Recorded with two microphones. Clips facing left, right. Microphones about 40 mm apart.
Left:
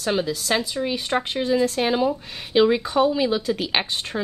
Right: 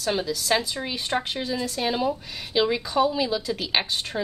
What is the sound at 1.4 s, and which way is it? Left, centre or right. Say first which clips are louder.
Speech: left 6 dB; left.